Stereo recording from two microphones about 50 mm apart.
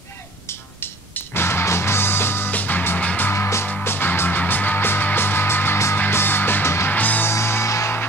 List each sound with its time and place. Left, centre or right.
1.1 s music: left
2.5 s music: left
6.9 s music: left
7.2 s music: left